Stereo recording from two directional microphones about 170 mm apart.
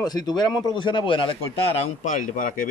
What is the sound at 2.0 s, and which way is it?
Speech, 50° left (ahead or behind).